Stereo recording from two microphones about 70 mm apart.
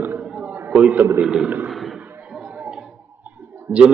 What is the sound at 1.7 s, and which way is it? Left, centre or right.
Fireworks, centre.